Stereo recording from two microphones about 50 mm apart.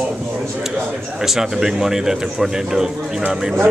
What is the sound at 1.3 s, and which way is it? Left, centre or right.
A man's voice, centre.